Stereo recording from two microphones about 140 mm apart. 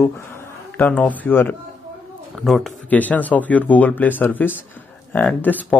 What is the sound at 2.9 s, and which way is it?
Speech, 10° left (ahead or behind).